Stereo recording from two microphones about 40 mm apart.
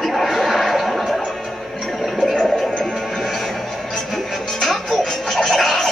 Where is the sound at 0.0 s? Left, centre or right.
Centre.